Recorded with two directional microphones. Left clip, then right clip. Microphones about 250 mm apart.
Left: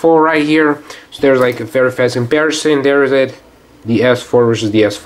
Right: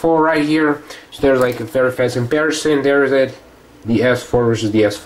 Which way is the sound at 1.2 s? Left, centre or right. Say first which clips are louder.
Left 3 dB; left.